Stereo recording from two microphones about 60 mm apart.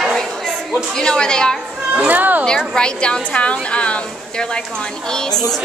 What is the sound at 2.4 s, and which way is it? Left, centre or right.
A woman's voice, centre.